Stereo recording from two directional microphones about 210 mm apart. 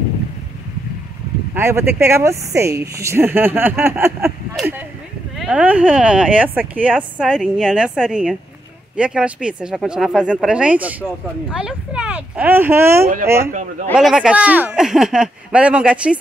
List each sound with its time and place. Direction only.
1.5 s speech: 10° right (ahead or behind)
4.6 s speech: centre (ahead or behind)
13.0 s a man's voice: 45° right (ahead or behind)
13.9 s speech: 5° right (ahead or behind)